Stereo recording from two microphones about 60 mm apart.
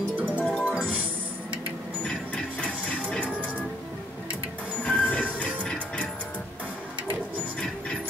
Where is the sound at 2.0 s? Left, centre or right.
Centre.